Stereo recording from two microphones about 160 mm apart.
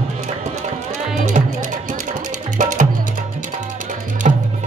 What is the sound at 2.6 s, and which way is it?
Music, 55° right (ahead or behind).